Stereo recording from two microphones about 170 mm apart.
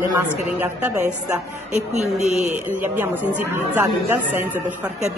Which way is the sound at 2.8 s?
10° right (ahead or behind).